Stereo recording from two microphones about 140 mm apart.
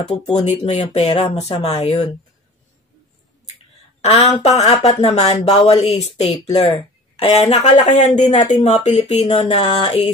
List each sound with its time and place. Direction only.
0.4 s speech: 55° left (ahead or behind)
4.0 s speech: 50° left (ahead or behind)